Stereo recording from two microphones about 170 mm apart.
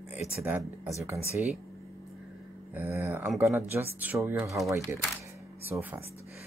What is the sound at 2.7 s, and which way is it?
Speech, 10° right (ahead or behind).